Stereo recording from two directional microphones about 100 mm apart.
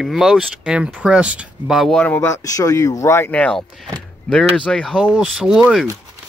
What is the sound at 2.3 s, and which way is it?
Speech, 35° left (ahead or behind).